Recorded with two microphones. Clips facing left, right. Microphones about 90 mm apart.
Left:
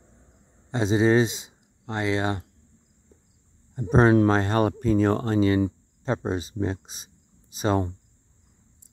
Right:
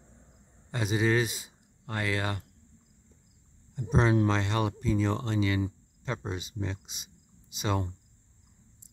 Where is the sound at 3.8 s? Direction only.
40° left (ahead or behind).